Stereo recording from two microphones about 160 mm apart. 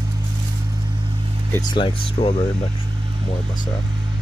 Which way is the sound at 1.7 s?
35° left (ahead or behind).